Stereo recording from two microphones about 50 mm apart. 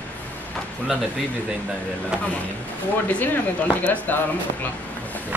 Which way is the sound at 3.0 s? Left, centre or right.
Left.